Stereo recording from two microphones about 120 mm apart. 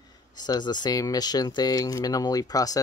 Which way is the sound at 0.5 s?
35° left (ahead or behind).